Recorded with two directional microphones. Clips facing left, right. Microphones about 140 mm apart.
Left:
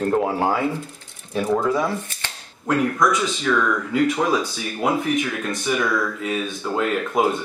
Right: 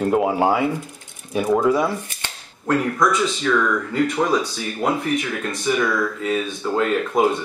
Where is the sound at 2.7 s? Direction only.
Centre (ahead or behind).